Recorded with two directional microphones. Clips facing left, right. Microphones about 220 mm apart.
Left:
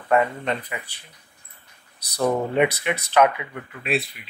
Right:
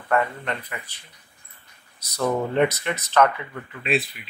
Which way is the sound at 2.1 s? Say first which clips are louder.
Left 1 dB; 15° left (ahead or behind).